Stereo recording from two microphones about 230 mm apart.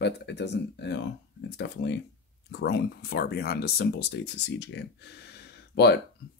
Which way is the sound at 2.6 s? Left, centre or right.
Left.